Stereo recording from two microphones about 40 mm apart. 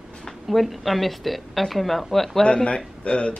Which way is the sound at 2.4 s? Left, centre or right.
Left.